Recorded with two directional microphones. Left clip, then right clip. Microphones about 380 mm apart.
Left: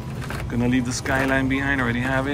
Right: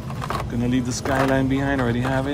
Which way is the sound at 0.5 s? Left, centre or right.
Centre.